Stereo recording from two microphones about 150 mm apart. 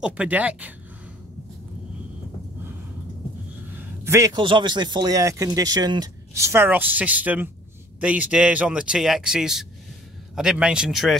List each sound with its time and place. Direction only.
0.0 s speech: 10° right (ahead or behind)
3.7 s a man's voice: 20° right (ahead or behind); by 11.1 s centre (ahead or behind)